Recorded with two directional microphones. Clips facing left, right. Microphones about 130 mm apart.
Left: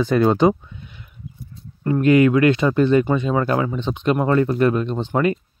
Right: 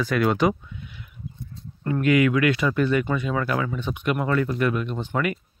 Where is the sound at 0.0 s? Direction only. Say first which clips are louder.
Left 5 dB; 30° left (ahead or behind).